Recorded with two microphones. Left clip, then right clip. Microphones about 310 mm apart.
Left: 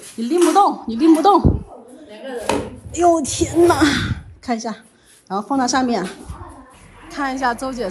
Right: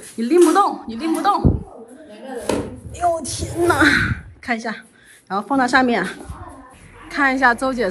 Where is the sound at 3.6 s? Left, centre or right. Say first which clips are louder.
Right 2 dB; centre.